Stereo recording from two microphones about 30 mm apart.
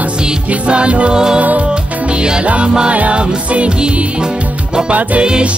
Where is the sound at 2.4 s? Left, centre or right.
Right.